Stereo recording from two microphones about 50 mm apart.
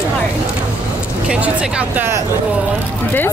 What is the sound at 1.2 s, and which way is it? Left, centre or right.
Speech, right.